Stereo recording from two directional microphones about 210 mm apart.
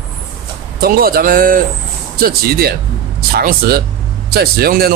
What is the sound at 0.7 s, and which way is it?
Speech, 45° right (ahead or behind).